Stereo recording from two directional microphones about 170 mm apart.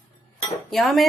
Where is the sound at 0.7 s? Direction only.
Centre (ahead or behind).